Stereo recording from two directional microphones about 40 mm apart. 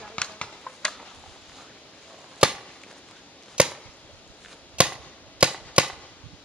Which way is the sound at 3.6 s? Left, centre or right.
Right.